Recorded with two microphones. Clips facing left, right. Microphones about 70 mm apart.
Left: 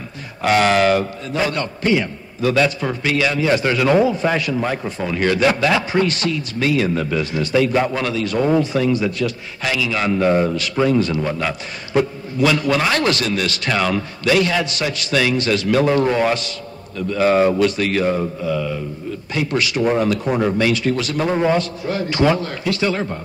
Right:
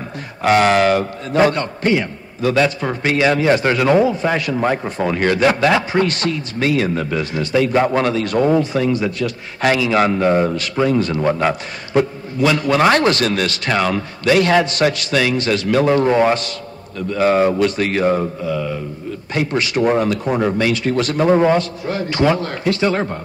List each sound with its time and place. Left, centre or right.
0.4 s a man's voice: right
4.8 s a man's voice: right
13.2 s a man's voice: right
13.5 s a man's voice: right
15.1 s a man's voice: right
20.3 s a man's voice: right